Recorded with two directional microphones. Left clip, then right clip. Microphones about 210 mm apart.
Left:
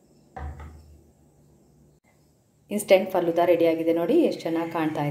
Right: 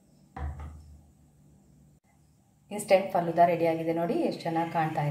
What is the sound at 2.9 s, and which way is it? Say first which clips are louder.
A woman's voice: left 4 dB; 35° left (ahead or behind).